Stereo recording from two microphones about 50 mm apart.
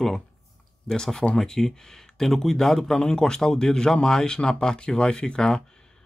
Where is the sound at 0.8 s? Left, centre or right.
Centre.